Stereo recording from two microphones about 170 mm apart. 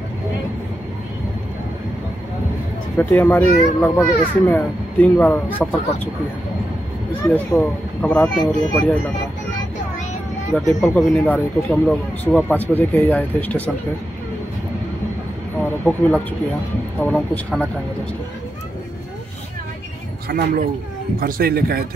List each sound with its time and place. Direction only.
3.0 s a child's voice: 10° left (ahead or behind)
7.2 s a child's voice: 10° left (ahead or behind)
10.5 s a child's voice: 5° left (ahead or behind)
15.9 s a child's voice: 10° left (ahead or behind)
20.2 s a man's voice: 60° right (ahead or behind)